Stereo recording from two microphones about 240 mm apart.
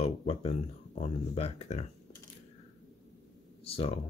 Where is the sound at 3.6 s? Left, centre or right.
Left.